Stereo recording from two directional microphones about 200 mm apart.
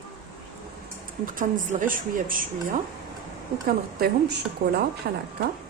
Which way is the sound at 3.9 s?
50° right (ahead or behind).